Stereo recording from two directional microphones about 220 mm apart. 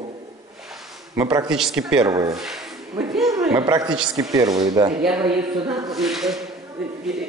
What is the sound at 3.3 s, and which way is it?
Speech, 15° right (ahead or behind).